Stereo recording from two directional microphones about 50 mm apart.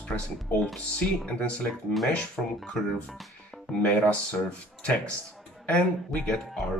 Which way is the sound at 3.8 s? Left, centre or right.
Left.